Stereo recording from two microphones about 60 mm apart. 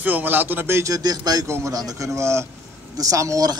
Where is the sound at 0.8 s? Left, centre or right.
Right.